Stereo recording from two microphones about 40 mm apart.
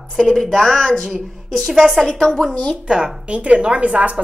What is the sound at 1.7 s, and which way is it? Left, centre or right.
Speech, centre.